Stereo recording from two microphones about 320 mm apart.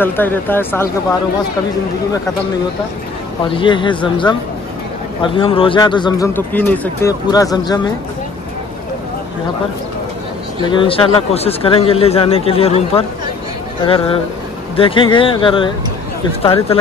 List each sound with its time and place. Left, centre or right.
0.0 s a man's voice: centre
3.5 s a man's voice: centre
10.7 s a man's voice: centre